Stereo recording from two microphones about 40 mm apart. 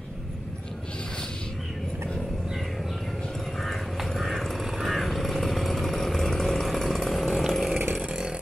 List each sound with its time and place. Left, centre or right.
3.5 s a sound: centre
4.6 s vehicle: centre
8.1 s chainsaw: centre